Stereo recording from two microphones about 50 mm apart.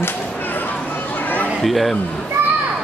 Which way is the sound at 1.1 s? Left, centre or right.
Left.